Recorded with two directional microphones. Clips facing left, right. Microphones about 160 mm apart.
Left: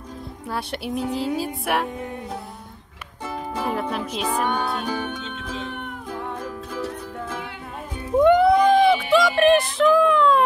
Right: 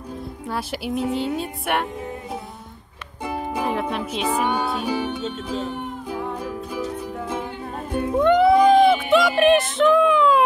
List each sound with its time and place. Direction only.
0.5 s speech: centre (ahead or behind)
3.9 s speech: 5° right (ahead or behind)
5.2 s music: 40° right (ahead or behind)
6.1 s music: 10° right (ahead or behind)
8.2 s a sound: centre (ahead or behind)